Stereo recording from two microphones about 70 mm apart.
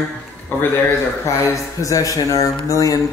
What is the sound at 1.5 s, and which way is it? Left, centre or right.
A man's voice, left.